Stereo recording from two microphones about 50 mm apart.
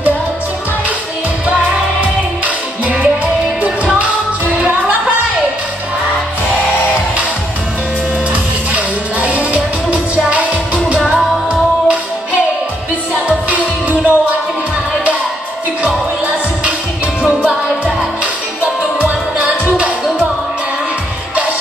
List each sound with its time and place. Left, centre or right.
2.0 s music: right
8.7 s music: right
13.3 s music: right
19.0 s music: right